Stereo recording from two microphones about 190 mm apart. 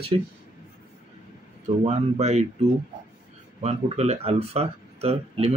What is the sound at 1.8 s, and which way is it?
Speech, 35° right (ahead or behind).